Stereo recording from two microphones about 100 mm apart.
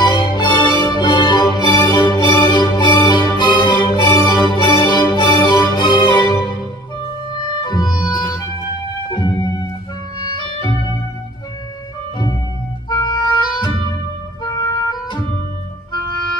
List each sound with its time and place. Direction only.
0.0 s music: 50° left (ahead or behind)
7.6 s music: 45° left (ahead or behind)
10.2 s clarinet: 50° left (ahead or behind)
12.9 s clarinet: 50° left (ahead or behind)
14.4 s music: 45° left (ahead or behind)